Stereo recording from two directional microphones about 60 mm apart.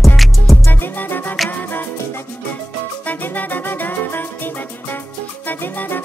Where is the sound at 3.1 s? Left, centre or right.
Left.